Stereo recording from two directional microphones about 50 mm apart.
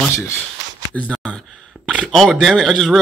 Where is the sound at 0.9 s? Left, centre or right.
Left.